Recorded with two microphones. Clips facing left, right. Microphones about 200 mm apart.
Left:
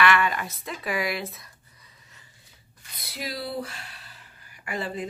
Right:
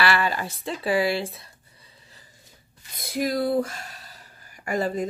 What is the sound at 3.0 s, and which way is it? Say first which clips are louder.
Speech: right 10 dB; 50° right (ahead or behind).